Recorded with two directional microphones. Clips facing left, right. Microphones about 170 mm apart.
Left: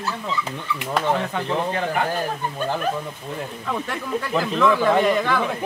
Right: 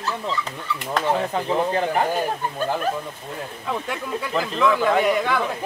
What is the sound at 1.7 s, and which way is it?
Speech, 30° right (ahead or behind).